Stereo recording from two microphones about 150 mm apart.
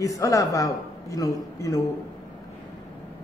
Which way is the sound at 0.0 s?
20° left (ahead or behind).